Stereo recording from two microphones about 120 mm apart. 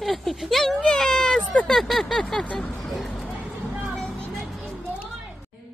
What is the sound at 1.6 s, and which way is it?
Speech, 5° left (ahead or behind).